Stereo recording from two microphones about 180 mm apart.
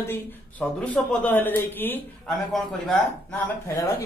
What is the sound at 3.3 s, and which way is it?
Speech, 15° left (ahead or behind).